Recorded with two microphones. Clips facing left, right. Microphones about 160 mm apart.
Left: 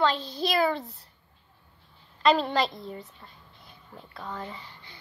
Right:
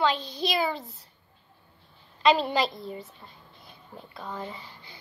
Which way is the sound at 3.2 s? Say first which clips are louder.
Right 1 dB; 20° right (ahead or behind).